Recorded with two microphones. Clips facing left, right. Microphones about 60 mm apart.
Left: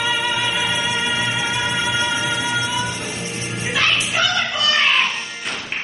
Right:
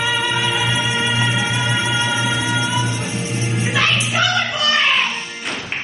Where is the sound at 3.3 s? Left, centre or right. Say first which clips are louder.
Right 5 dB; centre.